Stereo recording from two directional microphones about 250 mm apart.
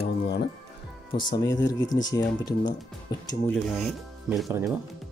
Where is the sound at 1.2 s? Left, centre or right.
Centre.